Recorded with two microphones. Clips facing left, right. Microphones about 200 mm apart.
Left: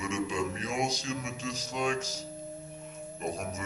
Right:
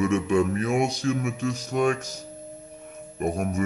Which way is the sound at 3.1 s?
60° right (ahead or behind).